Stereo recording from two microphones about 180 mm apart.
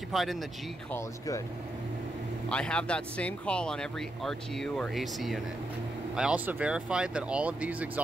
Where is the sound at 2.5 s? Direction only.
5° left (ahead or behind).